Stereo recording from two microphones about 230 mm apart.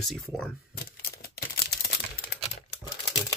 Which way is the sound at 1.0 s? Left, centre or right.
Left.